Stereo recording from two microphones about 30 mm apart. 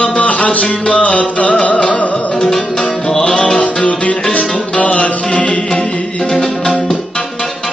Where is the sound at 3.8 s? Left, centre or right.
Left.